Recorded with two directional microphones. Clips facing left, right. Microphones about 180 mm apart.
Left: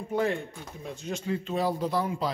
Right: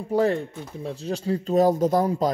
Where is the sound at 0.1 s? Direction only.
35° right (ahead or behind).